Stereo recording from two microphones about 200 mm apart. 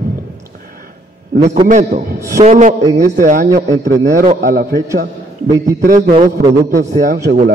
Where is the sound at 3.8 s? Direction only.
55° right (ahead or behind).